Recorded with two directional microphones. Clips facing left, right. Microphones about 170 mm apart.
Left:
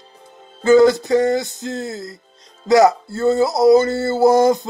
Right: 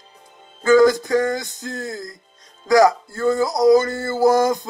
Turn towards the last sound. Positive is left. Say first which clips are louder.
# left 3 dB
turn(degrees=25)  # may be behind; listen again after turning